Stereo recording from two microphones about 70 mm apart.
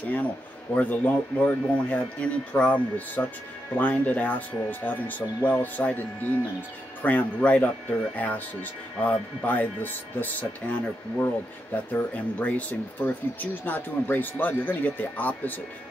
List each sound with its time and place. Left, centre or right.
0.7 s speech: left